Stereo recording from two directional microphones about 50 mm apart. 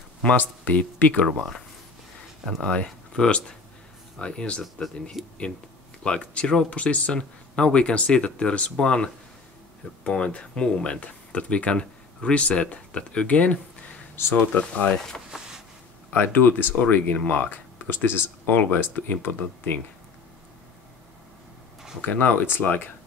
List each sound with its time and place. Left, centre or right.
0.4 s speech: left
1.2 s speech: centre
2.7 s speech: centre
5.2 s speech: centre
6.0 s speech: left
14.9 s speech: centre
16.1 s speech: left
22.0 s speech: left